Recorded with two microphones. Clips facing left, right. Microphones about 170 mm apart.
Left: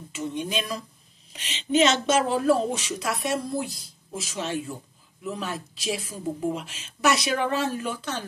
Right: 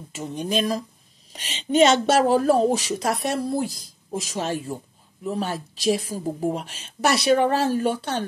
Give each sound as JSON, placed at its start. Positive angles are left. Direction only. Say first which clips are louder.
{"t": 0.1, "sound": "speech", "louder": "right 3 dB", "side_deg": -40}